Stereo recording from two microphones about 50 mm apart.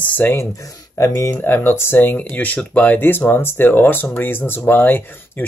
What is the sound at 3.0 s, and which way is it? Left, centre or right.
Speech, left.